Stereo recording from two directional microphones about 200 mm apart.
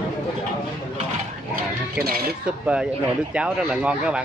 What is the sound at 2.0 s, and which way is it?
Speech, 45° right (ahead or behind).